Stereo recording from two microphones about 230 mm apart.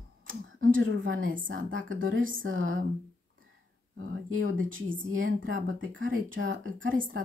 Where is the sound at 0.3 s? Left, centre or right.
Right.